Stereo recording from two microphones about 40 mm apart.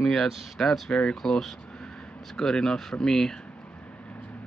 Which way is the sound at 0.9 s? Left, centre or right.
Left.